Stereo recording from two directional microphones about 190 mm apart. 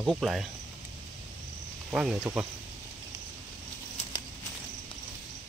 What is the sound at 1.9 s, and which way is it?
Speech, 5° right (ahead or behind).